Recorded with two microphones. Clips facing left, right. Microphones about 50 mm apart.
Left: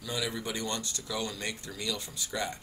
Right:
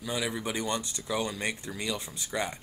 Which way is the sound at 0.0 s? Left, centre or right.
Centre.